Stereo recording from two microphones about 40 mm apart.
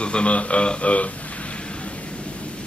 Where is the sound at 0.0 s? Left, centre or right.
Left.